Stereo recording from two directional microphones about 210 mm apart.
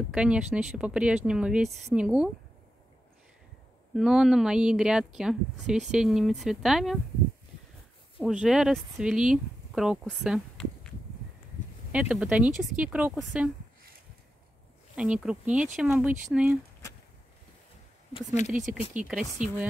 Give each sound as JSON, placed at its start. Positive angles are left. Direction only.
{"t": 0.1, "sound": "a woman's voice", "side_deg": -5}
{"t": 3.9, "sound": "a woman's voice", "side_deg": -5}
{"t": 8.2, "sound": "a woman's voice", "side_deg": 0}
{"t": 11.9, "sound": "a woman's voice", "side_deg": -5}
{"t": 15.0, "sound": "a woman's voice", "side_deg": -5}
{"t": 18.1, "sound": "speech", "side_deg": 35}
{"t": 18.9, "sound": "a woman's voice", "side_deg": -5}